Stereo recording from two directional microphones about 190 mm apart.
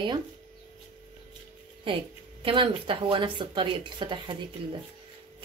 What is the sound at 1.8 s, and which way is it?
Speech, 30° right (ahead or behind).